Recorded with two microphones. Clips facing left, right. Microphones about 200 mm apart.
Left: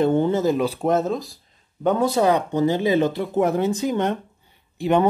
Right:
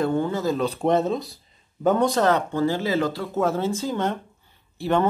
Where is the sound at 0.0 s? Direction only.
25° left (ahead or behind).